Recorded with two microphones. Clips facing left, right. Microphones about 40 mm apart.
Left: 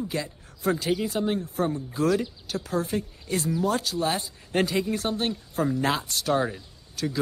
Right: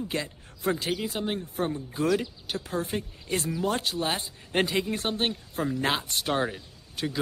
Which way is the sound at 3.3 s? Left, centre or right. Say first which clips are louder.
Left 2 dB; right.